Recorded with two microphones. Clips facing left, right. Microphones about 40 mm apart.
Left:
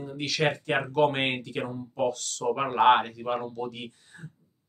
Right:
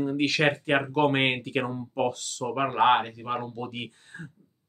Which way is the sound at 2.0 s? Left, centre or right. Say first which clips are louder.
Left 4 dB; centre.